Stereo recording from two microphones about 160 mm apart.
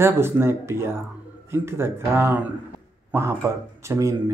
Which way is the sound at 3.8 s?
20° right (ahead or behind).